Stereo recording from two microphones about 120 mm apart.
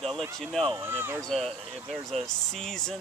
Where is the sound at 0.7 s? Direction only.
20° right (ahead or behind).